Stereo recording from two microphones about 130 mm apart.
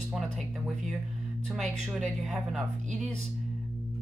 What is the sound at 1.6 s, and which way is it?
Speech, centre (ahead or behind).